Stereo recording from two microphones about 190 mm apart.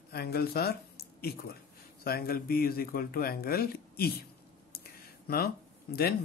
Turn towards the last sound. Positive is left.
turn(degrees=55)  # may be behind; listen again after turning